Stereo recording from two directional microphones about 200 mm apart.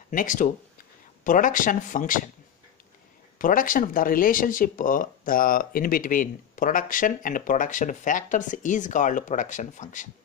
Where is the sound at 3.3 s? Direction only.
45° left (ahead or behind).